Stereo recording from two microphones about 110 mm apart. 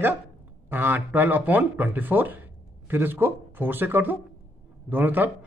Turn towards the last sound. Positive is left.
turn(degrees=-15)  # may be behind; listen again after turning